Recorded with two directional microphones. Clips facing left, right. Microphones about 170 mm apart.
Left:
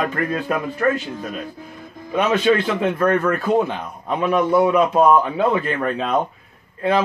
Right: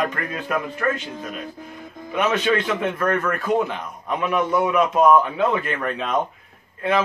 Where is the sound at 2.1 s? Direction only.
35° left (ahead or behind).